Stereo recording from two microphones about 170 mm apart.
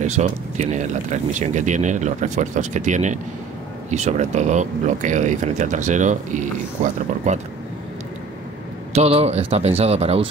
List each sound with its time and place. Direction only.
0.0 s speech: 45° right (ahead or behind)
8.9 s speech: 35° right (ahead or behind)